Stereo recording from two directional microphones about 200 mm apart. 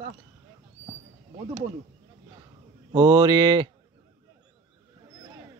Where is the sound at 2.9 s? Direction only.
20° right (ahead or behind).